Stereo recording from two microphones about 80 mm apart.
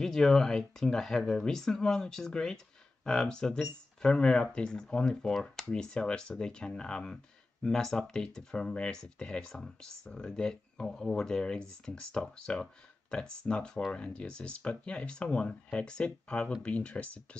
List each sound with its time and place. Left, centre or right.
0.0 s speech: centre